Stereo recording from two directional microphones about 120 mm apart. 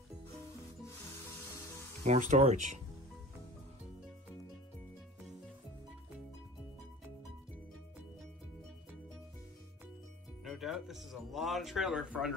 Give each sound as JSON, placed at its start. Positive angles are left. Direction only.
{"t": 2.0, "sound": "speech", "side_deg": -70}
{"t": 10.4, "sound": "speech", "side_deg": 0}